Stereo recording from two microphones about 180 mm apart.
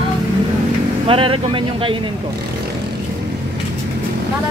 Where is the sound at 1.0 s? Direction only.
30° right (ahead or behind).